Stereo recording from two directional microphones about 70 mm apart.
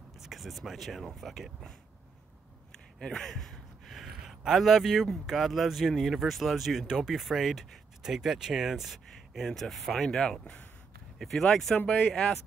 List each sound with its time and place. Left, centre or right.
0.2 s a man's voice: centre
3.0 s a man's voice: centre
11.1 s a man's voice: centre
11.8 s speech: centre